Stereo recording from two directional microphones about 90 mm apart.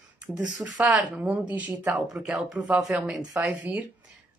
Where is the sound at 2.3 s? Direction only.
5° right (ahead or behind).